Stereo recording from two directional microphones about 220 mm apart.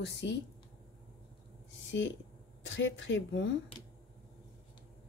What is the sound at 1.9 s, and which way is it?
Speech, 55° left (ahead or behind).